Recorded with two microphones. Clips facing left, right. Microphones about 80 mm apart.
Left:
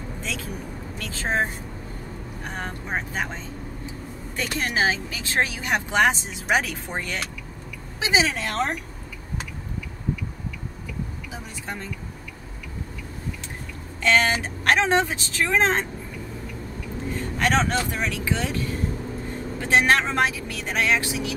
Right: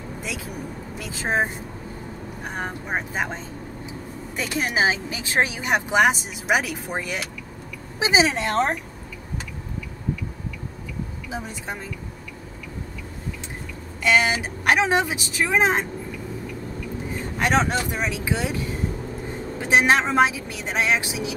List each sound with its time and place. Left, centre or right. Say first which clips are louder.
0.2 s speech: right 1 dB; centre
4.4 s speech: right 2 dB; centre
11.3 s speech: right 3 dB; centre
14.0 s speech: right 1 dB; centre
17.4 s speech: right 1 dB; centre